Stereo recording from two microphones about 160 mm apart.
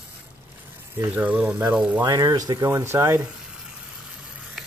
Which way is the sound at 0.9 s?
10° right (ahead or behind).